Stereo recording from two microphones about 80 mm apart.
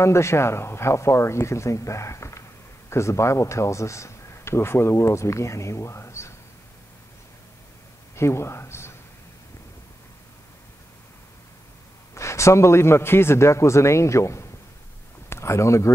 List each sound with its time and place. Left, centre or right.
0.0 s speech: left
8.2 s a man's voice: left
12.1 s speech: left